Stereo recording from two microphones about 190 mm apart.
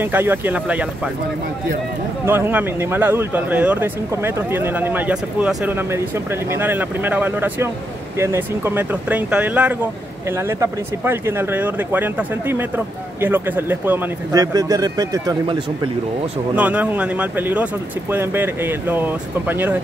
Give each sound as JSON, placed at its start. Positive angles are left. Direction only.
{"t": 0.0, "sound": "speech", "side_deg": -10}
{"t": 2.2, "sound": "speech", "side_deg": -10}
{"t": 16.5, "sound": "speech", "side_deg": -10}